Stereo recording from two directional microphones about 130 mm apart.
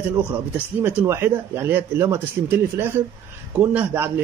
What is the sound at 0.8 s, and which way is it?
Speech, 20° right (ahead or behind).